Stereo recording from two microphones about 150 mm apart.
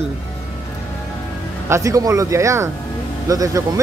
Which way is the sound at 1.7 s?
20° right (ahead or behind).